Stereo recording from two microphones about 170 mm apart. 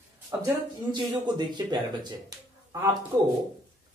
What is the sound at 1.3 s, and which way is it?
Speech, 25° right (ahead or behind).